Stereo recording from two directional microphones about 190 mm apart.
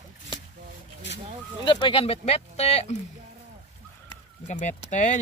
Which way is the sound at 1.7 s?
25° left (ahead or behind).